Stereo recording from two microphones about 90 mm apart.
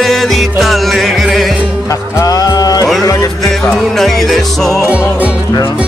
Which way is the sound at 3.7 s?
5° left (ahead or behind).